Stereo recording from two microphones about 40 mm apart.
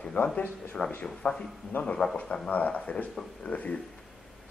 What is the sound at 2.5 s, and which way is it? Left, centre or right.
Speech, left.